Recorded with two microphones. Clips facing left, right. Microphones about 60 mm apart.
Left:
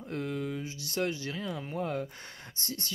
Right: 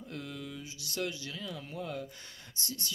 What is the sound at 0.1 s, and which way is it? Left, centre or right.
Speech, left.